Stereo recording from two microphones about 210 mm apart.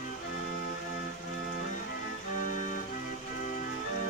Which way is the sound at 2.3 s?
40° left (ahead or behind).